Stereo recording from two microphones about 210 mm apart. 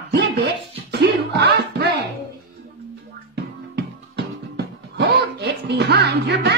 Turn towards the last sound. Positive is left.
turn(degrees=-55)  # may be behind; listen again after turning